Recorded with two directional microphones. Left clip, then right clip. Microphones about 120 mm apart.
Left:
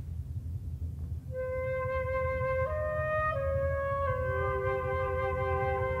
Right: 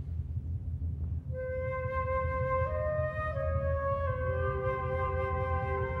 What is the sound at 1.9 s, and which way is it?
Wind instrument, 30° left (ahead or behind).